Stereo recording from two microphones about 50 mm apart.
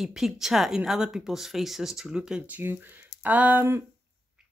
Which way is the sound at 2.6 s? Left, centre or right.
Right.